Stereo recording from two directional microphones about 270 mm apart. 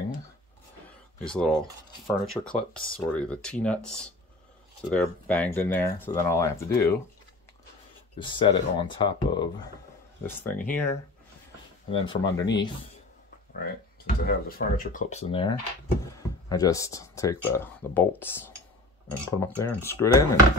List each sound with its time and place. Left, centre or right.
1.3 s speech: centre
8.2 s speech: centre
13.5 s speech: left; by 20.3 s centre